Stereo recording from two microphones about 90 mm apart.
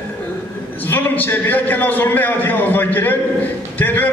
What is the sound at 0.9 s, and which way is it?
A man's voice, 20° left (ahead or behind).